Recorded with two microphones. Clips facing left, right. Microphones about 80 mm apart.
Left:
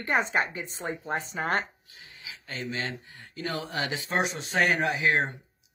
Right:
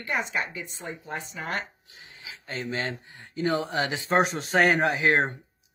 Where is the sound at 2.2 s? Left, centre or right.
Right.